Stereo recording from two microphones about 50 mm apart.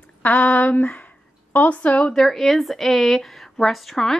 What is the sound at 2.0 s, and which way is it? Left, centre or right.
Speech, centre.